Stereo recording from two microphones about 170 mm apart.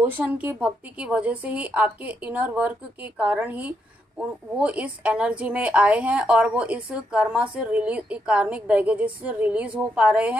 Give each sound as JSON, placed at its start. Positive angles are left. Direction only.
{"t": 0.0, "sound": "speech", "side_deg": -10}